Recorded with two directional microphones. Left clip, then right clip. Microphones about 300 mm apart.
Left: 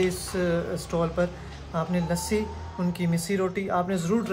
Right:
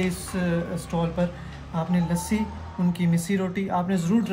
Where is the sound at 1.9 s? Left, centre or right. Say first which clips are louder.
Left 1 dB; centre.